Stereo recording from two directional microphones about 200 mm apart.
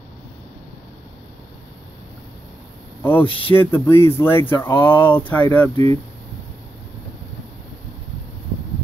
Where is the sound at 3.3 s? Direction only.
25° left (ahead or behind).